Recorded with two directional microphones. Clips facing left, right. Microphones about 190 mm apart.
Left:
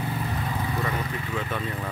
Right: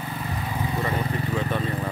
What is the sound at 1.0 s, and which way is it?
Vehicle, 35° right (ahead or behind).